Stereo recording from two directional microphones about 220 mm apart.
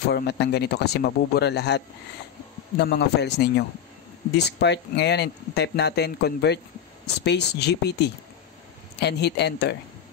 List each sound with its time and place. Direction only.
0.1 s speech: 50° left (ahead or behind)
2.8 s speech: 50° left (ahead or behind)